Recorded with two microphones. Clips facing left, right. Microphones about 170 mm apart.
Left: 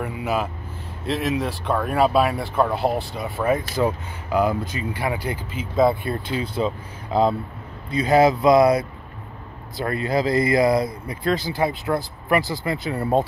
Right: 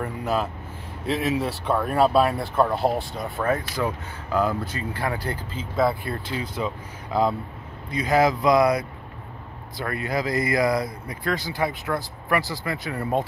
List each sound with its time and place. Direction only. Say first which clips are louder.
0.0 s speech: left 1 dB; 5° left (ahead or behind)
3.8 s speech: left 5 dB; 25° left (ahead or behind)
4.3 s speech: left 3 dB; 15° left (ahead or behind)